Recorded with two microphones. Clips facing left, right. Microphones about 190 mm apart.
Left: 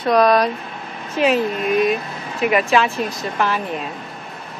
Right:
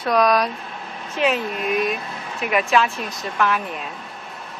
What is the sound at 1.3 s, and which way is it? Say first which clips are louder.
Speech: left 5 dB; centre (ahead or behind).